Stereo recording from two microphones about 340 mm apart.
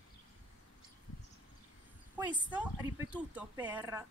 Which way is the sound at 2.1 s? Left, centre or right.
Centre.